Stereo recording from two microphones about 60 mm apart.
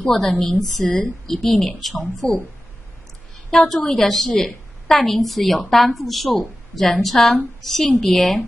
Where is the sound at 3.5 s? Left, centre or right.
Centre.